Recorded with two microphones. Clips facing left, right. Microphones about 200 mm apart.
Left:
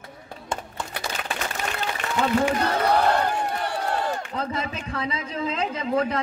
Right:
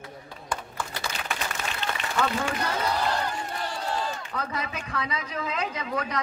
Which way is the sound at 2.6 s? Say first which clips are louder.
Left 6 dB; 60° left (ahead or behind).